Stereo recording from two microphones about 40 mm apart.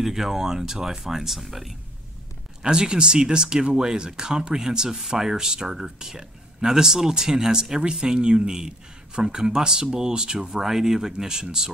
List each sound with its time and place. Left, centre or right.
0.0 s speech: centre
2.6 s speech: right
10.6 s speech: centre